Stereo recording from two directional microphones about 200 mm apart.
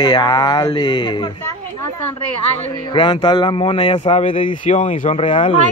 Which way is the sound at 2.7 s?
25° left (ahead or behind).